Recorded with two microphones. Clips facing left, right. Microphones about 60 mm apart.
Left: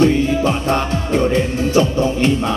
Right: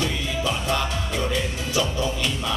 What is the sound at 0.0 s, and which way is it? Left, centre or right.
Music, left.